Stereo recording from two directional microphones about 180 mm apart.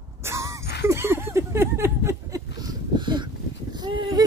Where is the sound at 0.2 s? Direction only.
15° right (ahead or behind).